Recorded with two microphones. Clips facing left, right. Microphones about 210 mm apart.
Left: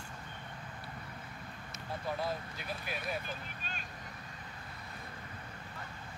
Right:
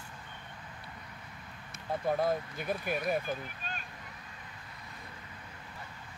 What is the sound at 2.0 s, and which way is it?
Speech, 50° right (ahead or behind).